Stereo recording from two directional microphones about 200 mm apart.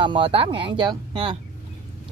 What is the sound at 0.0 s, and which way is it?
Speech, 25° right (ahead or behind).